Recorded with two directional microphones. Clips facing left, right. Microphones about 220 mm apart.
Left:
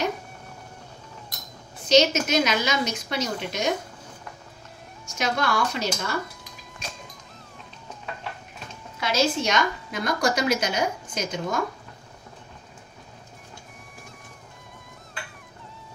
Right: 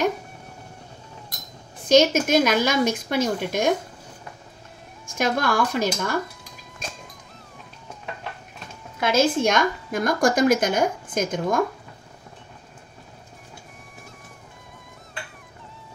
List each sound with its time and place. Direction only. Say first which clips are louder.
1.9 s a woman's voice: right 3 dB; 50° right (ahead or behind)
5.1 s a woman's voice: right 3 dB; 50° right (ahead or behind)
9.0 s a woman's voice: right 4 dB; 50° right (ahead or behind)